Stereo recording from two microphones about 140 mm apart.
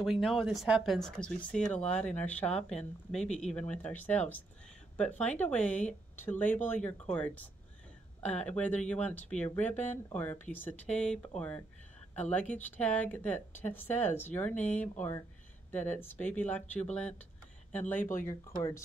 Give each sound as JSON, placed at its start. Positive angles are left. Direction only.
{"t": 0.0, "sound": "a woman's voice", "side_deg": 0}